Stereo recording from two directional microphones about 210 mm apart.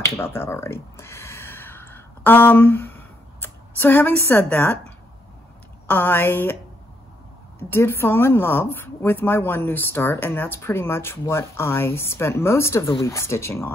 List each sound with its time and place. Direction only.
0.2 s gasp: 10° left (ahead or behind)
5.9 s a woman's voice: 10° left (ahead or behind)
7.7 s a woman's voice: 10° left (ahead or behind)